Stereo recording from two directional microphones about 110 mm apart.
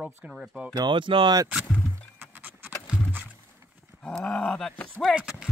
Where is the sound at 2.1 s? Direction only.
15° right (ahead or behind).